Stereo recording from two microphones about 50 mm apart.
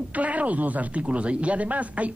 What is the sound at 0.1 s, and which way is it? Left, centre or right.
Speech, right.